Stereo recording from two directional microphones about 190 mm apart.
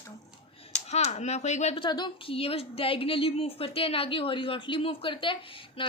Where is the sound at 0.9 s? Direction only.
35° left (ahead or behind).